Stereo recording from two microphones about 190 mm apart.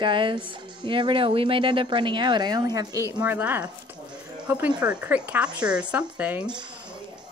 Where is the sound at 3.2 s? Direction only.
10° right (ahead or behind).